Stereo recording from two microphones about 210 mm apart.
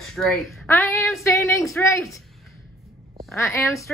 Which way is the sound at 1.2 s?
15° left (ahead or behind).